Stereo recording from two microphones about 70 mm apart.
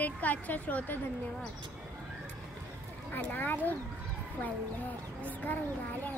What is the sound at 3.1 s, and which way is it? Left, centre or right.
Speech, left.